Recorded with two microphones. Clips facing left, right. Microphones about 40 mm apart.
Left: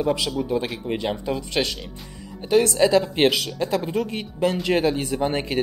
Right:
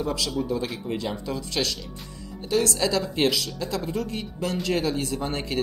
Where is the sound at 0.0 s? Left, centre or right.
Left.